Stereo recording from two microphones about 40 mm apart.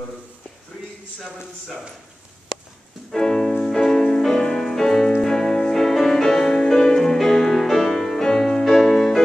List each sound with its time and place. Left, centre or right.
3.1 s music: centre